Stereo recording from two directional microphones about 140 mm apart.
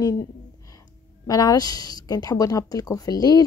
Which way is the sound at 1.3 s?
25° left (ahead or behind).